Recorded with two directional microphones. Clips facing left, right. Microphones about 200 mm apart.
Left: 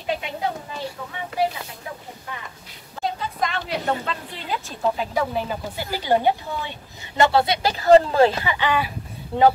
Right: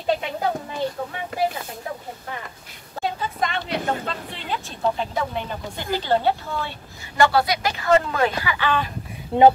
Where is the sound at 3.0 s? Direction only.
Centre (ahead or behind).